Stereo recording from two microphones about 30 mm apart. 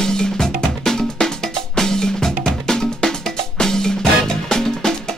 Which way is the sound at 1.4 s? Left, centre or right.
Centre.